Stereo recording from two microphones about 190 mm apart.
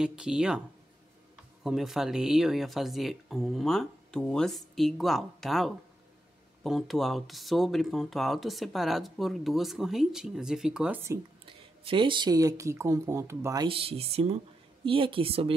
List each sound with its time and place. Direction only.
0.0 s speech: 5° right (ahead or behind)
1.6 s speech: centre (ahead or behind)
11.4 s speech: 25° right (ahead or behind)